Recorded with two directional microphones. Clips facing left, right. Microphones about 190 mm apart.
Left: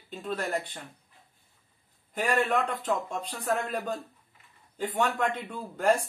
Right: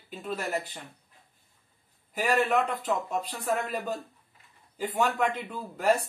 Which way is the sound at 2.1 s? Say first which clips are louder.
Right 1 dB; 5° right (ahead or behind).